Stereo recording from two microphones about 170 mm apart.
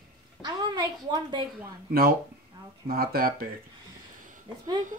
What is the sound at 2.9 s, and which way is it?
Speech, 60° right (ahead or behind).